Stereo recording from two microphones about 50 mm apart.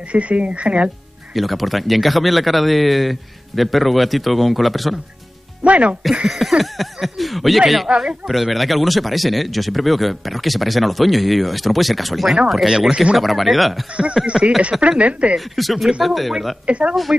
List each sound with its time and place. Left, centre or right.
0.1 s speech: right
1.3 s speech: centre
5.6 s speech: right
6.2 s speech: centre
12.6 s speech: centre
13.2 s speech: centre
13.9 s speech: right
15.3 s speech: centre
16.6 s speech: right